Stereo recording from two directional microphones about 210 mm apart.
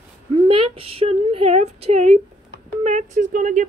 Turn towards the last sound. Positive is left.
turn(degrees=-35)  # may be behind; listen again after turning